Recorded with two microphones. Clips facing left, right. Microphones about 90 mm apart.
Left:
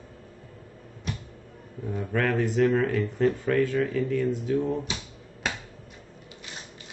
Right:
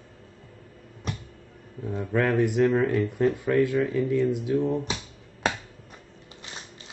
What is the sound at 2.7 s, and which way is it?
Speech, 25° right (ahead or behind).